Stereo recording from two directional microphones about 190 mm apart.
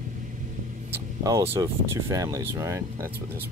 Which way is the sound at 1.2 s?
20° right (ahead or behind).